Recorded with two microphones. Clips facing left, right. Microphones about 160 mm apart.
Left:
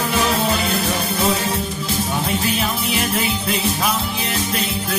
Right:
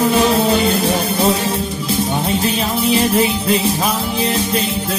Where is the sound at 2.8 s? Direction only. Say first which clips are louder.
Right 7 dB; 30° right (ahead or behind).